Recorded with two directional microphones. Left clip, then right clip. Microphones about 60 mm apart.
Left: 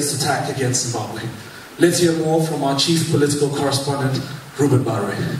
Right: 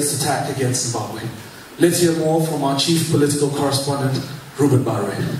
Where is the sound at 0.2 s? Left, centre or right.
Centre.